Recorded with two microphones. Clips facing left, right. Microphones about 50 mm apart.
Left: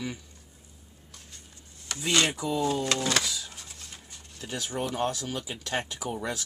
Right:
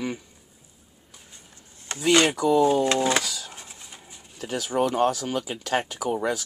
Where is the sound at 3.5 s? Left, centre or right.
Right.